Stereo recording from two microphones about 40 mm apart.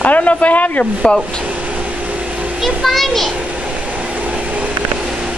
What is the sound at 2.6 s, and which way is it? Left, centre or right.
Speech, centre.